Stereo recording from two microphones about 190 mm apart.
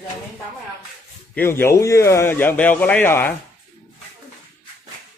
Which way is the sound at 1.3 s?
10° left (ahead or behind).